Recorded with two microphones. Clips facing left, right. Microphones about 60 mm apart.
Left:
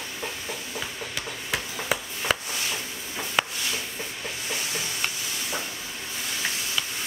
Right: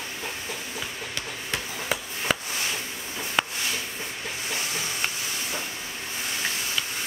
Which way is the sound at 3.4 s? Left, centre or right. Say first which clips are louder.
Even; centre.